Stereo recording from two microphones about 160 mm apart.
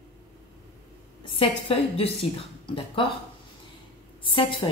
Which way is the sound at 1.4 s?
35° left (ahead or behind).